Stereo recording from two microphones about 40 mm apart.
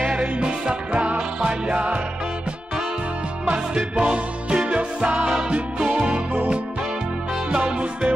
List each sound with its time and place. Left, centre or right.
0.0 s music: right
3.4 s music: right
5.5 s music: centre
7.5 s music: right